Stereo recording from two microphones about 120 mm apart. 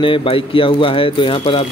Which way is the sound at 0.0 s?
45° left (ahead or behind).